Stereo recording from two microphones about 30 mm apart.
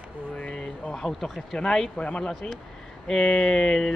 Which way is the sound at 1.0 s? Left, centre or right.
Centre.